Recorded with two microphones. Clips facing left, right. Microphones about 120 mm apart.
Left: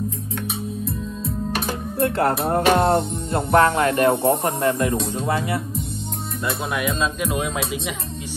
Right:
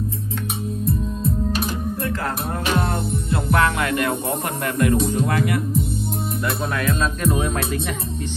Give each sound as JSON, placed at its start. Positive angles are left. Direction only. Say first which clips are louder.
{"t": 1.5, "sound": "music", "louder": "right 1 dB", "side_deg": 60}
{"t": 3.4, "sound": "music", "louder": "left 4 dB", "side_deg": 30}
{"t": 6.8, "sound": "music", "louder": "right 2 dB", "side_deg": 15}